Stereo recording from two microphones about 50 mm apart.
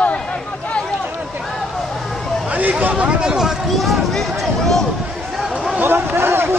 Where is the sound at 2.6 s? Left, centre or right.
Right.